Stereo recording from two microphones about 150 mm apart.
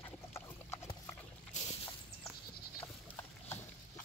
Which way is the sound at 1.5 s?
55° left (ahead or behind).